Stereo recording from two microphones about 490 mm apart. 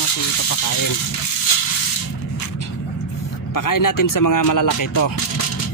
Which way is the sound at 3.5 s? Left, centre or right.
Left.